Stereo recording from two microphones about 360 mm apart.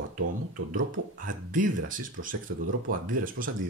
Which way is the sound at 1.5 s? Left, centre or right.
Right.